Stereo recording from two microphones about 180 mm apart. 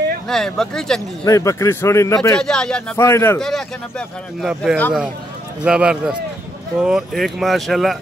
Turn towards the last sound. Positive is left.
turn(degrees=0)  # may be behind; listen again after turning